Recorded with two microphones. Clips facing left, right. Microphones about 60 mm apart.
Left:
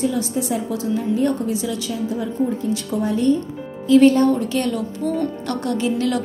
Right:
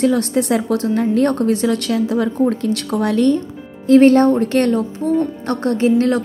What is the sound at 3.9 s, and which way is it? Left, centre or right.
Speech, right.